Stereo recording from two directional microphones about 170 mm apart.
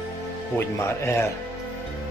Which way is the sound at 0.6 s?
15° left (ahead or behind).